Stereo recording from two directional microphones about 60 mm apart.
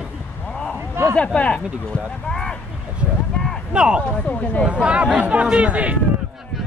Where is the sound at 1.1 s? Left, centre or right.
Centre.